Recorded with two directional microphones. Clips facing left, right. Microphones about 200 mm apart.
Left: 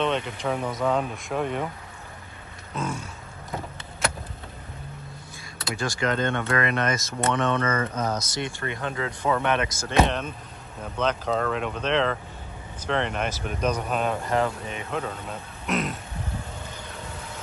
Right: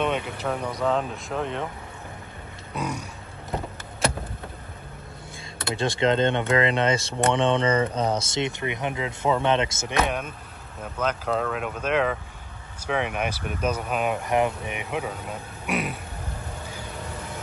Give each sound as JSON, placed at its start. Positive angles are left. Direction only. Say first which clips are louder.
{"t": 0.0, "sound": "speech", "louder": "even", "side_deg": -5}
{"t": 2.7, "sound": "grunt", "louder": "even", "side_deg": -15}
{"t": 5.6, "sound": "speech", "louder": "right 4 dB", "side_deg": -30}
{"t": 7.6, "sound": "speech", "louder": "right 4 dB", "side_deg": -15}
{"t": 7.9, "sound": "speech", "louder": "right 3 dB", "side_deg": -30}
{"t": 10.0, "sound": "speech", "louder": "left 1 dB", "side_deg": -10}